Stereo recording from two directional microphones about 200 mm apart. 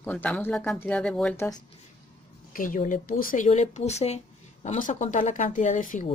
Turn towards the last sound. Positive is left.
turn(degrees=40)  # may be behind; listen again after turning